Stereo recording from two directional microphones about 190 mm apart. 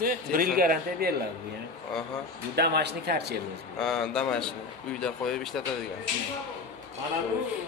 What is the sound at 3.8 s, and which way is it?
Speech, centre (ahead or behind).